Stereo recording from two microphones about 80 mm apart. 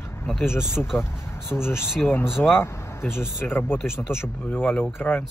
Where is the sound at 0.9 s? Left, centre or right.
Left.